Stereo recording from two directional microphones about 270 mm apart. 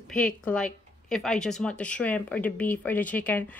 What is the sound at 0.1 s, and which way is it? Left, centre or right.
Speech, centre.